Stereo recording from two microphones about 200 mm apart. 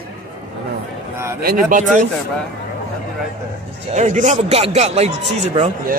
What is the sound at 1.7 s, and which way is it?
Speech, 40° right (ahead or behind).